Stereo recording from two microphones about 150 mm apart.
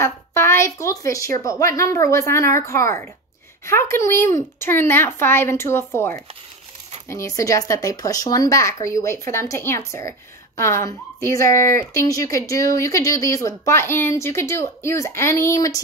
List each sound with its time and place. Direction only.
0.0 s a woman's voice: 20° left (ahead or behind)